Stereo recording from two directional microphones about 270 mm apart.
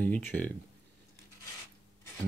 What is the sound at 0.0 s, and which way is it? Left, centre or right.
Speech, centre.